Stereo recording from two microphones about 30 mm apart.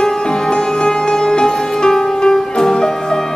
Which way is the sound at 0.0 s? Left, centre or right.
Left.